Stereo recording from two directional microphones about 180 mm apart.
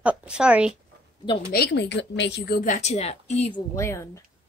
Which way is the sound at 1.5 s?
70° left (ahead or behind).